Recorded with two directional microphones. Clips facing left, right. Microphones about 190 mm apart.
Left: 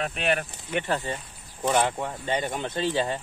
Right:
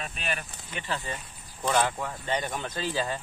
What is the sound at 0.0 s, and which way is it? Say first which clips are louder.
Speech: left 8 dB; 65° left (ahead or behind).